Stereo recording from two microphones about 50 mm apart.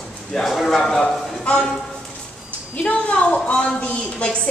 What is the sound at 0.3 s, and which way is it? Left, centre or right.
Speech, centre.